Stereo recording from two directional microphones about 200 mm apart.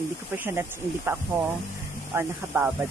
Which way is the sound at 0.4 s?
10° right (ahead or behind).